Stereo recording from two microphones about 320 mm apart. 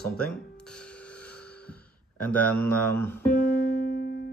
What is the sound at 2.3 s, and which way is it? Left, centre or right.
Speech, centre.